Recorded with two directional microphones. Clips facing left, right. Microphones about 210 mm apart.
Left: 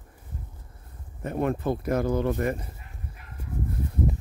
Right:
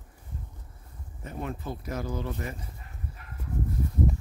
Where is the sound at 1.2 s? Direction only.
55° left (ahead or behind).